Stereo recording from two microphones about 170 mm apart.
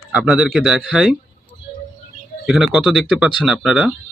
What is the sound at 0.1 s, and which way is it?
Speech, 5° right (ahead or behind).